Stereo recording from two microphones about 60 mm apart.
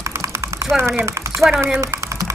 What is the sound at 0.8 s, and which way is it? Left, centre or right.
Speech, right.